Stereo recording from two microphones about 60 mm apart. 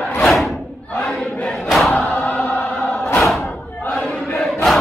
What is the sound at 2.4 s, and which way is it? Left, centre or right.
Opera, left.